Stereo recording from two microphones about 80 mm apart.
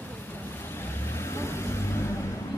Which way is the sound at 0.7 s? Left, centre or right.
Left.